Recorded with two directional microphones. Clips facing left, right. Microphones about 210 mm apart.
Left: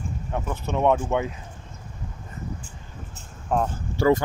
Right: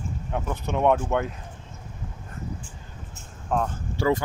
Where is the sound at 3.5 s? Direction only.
5° left (ahead or behind).